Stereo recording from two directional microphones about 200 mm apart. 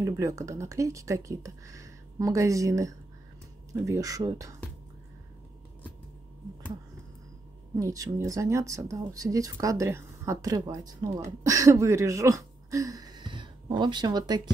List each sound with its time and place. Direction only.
0.0 s speech: 15° right (ahead or behind)
7.8 s speech: 15° right (ahead or behind)